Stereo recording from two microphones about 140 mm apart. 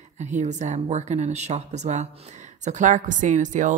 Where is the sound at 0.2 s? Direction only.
55° right (ahead or behind).